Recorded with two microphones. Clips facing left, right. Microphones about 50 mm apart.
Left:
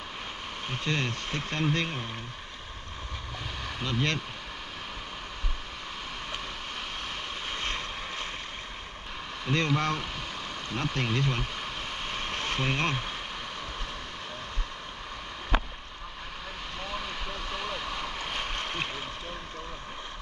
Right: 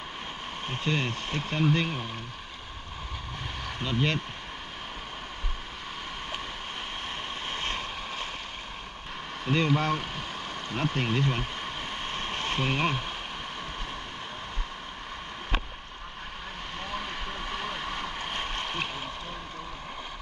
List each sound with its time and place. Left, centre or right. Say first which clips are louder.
0.8 s speech: right 1 dB; centre
3.8 s speech: right 2 dB; centre
9.5 s speech: right 2 dB; centre
12.1 s vehicle: even; centre
12.5 s speech: right 2 dB; centre
16.9 s vehicle: right 1 dB; right